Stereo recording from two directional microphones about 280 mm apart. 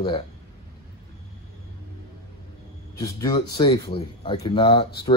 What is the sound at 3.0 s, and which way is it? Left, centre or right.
Speech, centre.